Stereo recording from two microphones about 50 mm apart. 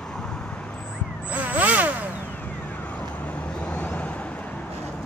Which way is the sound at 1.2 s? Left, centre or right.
Right.